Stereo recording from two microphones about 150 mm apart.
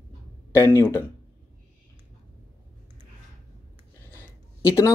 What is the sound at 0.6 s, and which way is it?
Speech, 15° left (ahead or behind).